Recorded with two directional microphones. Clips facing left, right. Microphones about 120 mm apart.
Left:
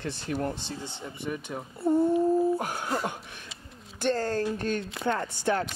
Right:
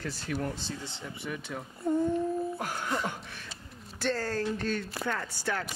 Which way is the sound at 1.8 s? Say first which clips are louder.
Left 4 dB; 30° left (ahead or behind).